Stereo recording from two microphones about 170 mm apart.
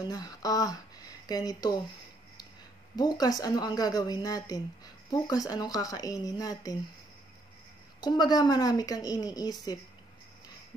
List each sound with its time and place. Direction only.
0.1 s a woman's voice: 25° left (ahead or behind)
3.0 s a woman's voice: 25° left (ahead or behind)
8.0 s a woman's voice: 25° left (ahead or behind)